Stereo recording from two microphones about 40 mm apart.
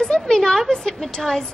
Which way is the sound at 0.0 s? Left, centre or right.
Centre.